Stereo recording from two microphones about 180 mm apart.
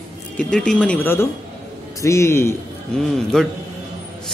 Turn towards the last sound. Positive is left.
turn(degrees=0)  # may be behind; listen again after turning